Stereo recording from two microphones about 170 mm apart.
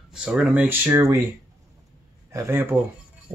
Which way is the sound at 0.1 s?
5° right (ahead or behind).